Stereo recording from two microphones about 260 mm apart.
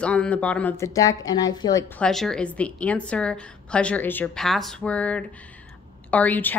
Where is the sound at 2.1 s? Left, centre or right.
Centre.